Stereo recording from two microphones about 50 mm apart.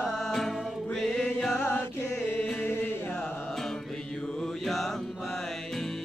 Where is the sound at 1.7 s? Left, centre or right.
Left.